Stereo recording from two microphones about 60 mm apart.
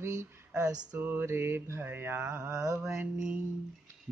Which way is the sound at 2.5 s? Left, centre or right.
Right.